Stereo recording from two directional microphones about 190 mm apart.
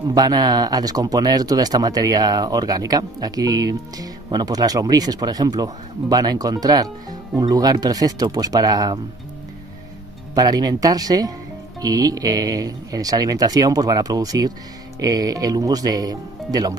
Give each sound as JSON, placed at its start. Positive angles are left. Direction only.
{"t": 0.1, "sound": "speech", "side_deg": -20}
{"t": 10.3, "sound": "speech", "side_deg": -20}